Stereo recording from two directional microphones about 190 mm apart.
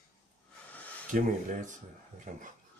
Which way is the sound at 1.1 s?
45° right (ahead or behind).